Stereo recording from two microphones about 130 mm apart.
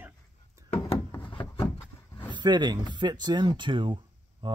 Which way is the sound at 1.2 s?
45° left (ahead or behind).